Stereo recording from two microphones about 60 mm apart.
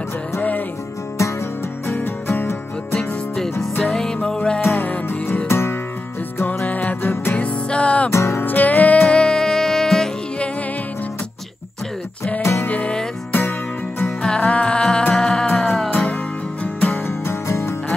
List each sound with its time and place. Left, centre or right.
0.4 s music: left
1.9 s music: left
3.8 s music: centre
4.7 s music: left
5.5 s music: left
6.6 s music: left
8.1 s music: left
8.4 s music: left
9.0 s music: centre
12.6 s music: left
14.0 s music: centre
15.9 s music: left
17.0 s music: left